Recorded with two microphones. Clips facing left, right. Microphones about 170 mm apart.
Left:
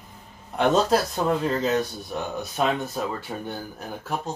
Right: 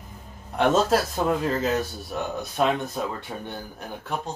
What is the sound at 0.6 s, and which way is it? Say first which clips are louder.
Speech: even; centre (ahead or behind).